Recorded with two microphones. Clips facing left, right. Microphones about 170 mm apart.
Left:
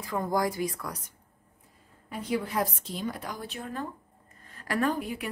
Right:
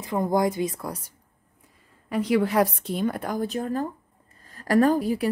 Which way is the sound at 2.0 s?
80° right.